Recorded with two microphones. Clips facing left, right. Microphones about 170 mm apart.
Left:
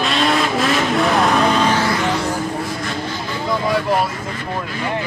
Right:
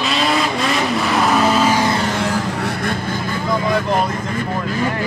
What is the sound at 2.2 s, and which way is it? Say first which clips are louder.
Vehicle: right 1 dB; 75° right (ahead or behind).